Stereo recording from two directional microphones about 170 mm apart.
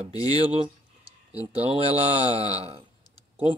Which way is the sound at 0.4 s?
35° right (ahead or behind).